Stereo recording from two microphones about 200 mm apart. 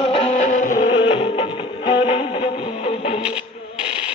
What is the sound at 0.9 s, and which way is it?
Music, 25° left (ahead or behind).